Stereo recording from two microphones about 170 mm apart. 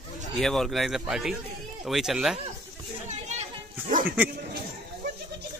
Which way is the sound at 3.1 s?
40° right (ahead or behind).